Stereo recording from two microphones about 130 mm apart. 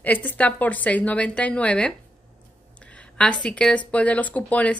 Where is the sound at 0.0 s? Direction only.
15° left (ahead or behind).